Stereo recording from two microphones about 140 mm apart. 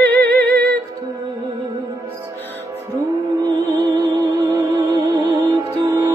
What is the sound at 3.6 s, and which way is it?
Music, 25° right (ahead or behind).